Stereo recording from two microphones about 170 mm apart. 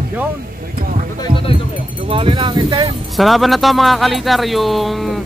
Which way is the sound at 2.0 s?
30° right (ahead or behind).